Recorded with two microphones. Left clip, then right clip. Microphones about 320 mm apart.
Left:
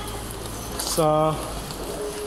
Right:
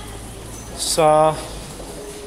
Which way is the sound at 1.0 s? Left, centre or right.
Right.